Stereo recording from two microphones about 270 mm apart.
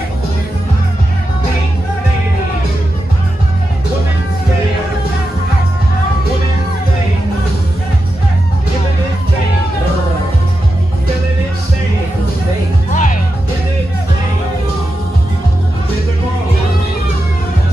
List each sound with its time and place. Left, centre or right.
12.9 s music: left